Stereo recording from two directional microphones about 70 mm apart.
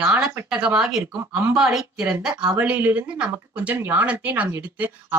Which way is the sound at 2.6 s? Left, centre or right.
Right.